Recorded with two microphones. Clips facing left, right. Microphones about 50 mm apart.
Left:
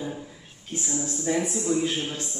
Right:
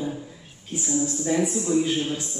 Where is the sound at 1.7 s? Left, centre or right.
Centre.